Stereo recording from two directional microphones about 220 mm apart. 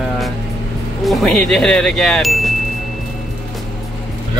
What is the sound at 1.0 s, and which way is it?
Speech, centre (ahead or behind).